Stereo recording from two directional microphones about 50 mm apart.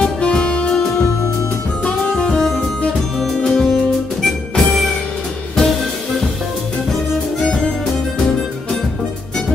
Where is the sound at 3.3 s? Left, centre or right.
Centre.